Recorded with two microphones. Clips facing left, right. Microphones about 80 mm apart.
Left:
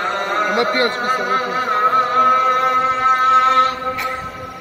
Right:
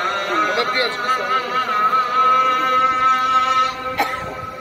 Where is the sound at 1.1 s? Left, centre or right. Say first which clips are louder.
Left 1 dB; centre.